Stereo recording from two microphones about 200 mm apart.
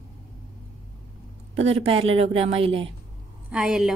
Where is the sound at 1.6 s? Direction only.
30° right (ahead or behind).